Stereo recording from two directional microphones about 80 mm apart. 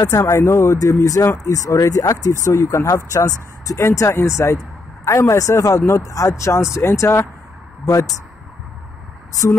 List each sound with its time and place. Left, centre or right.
0.0 s speech: left